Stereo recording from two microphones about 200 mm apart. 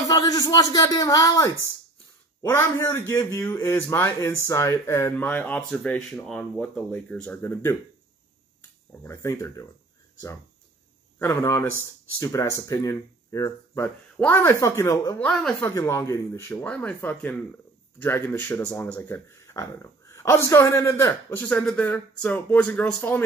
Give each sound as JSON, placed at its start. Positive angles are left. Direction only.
{"t": 0.1, "sound": "a man's voice", "side_deg": 20}
{"t": 9.0, "sound": "a man's voice", "side_deg": 10}
{"t": 11.1, "sound": "a man's voice", "side_deg": 10}